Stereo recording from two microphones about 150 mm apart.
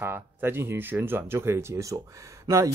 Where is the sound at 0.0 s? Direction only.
15° right (ahead or behind).